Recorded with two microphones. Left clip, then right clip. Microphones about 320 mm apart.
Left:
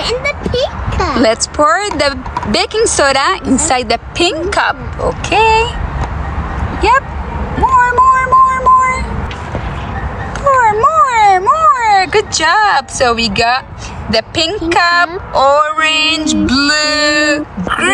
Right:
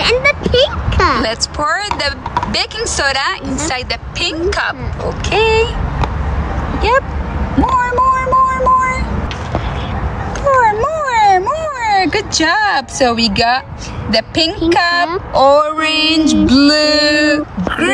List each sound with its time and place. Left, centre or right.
0.0 s speech: centre
7.6 s child singing: centre
10.5 s a sound: centre
14.1 s speech: centre